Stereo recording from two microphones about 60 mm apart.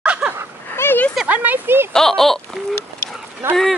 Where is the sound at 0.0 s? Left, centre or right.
Centre.